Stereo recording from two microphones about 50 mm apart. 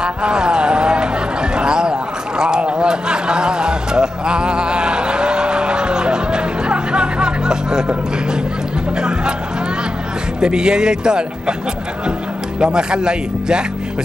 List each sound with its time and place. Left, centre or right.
0.0 s a sound: centre
8.9 s music: centre
10.4 s speech: centre
12.5 s speech: centre